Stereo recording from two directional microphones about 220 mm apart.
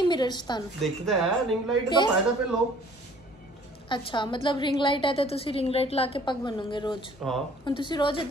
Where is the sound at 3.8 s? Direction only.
20° left (ahead or behind).